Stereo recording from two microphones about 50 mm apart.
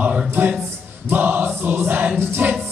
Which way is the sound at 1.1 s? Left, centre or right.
Right.